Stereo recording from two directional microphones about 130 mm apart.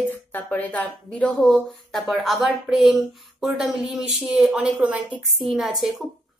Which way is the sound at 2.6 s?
5° right (ahead or behind).